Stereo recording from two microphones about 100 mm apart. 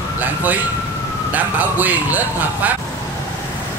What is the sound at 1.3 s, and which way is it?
A man's voice, 15° right (ahead or behind).